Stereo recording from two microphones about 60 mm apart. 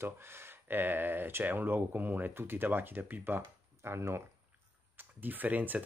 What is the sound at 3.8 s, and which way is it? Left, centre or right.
Speech, right.